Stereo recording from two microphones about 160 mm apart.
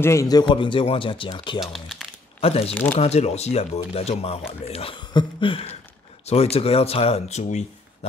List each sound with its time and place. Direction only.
0.0 s speech: 20° left (ahead or behind)
1.6 s speech: centre (ahead or behind)
2.4 s speech: 40° left (ahead or behind)
2.7 s speech: 10° left (ahead or behind)
3.0 s speech: 40° left (ahead or behind)